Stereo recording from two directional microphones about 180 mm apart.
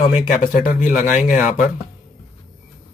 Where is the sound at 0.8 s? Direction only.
45° left (ahead or behind).